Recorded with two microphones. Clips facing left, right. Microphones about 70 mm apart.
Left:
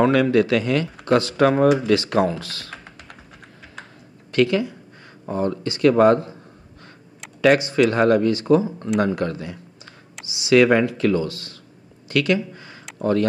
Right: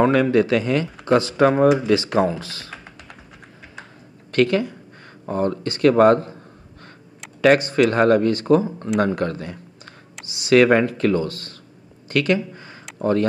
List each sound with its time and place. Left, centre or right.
0.0 s speech: right
4.3 s speech: right
7.4 s speech: right
12.1 s a sound: right